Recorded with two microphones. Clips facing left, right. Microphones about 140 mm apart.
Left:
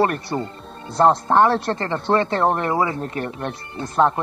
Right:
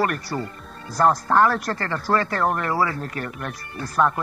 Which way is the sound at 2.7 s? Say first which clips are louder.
Left 2 dB; 20° left (ahead or behind).